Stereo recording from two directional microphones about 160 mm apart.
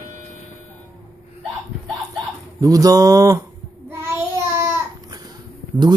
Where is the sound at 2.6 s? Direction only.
20° right (ahead or behind).